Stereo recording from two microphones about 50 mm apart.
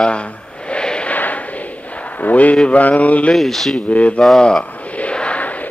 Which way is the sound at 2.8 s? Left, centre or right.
Left.